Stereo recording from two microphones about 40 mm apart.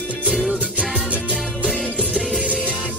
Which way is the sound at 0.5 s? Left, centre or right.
Right.